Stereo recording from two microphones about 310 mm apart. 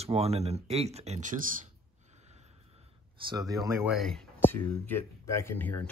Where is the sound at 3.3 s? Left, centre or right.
Centre.